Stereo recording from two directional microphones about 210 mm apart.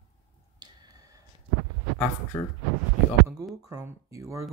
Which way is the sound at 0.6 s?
15° right (ahead or behind).